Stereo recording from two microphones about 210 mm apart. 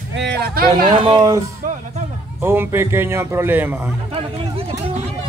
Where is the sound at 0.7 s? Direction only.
25° right (ahead or behind).